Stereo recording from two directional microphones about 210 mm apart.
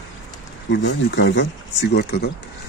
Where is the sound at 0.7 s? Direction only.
55° left (ahead or behind).